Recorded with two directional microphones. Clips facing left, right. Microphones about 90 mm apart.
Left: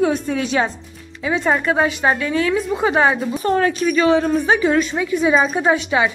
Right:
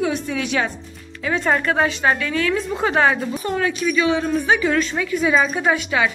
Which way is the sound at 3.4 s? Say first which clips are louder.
Left 5 dB; 40° left (ahead or behind).